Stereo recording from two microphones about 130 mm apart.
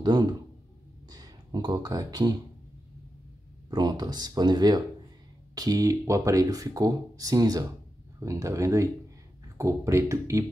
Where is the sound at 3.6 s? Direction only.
35° right (ahead or behind).